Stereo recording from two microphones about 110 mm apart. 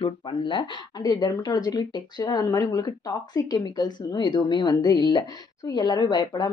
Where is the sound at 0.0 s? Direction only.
45° left (ahead or behind).